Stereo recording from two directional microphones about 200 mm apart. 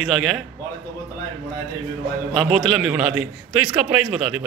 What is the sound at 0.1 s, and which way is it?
Speech, centre (ahead or behind).